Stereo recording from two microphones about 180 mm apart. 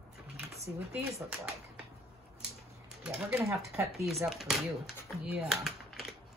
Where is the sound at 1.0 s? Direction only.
10° right (ahead or behind).